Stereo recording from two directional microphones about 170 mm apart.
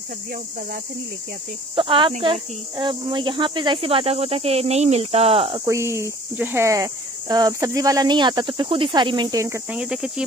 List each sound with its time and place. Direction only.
1.8 s speech: 30° right (ahead or behind)
5.7 s speech: 15° right (ahead or behind)
9.8 s speech: 5° right (ahead or behind)